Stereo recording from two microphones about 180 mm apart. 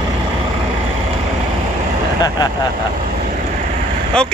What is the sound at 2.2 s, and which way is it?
Speech, 20° left (ahead or behind).